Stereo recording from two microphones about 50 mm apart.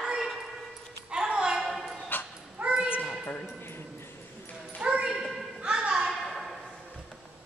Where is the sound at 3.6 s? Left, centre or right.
Left.